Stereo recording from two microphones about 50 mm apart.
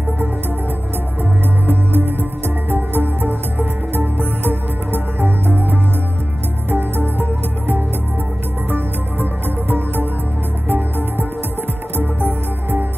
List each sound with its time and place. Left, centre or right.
2.0 s music: right
8.6 s music: right
10.7 s music: right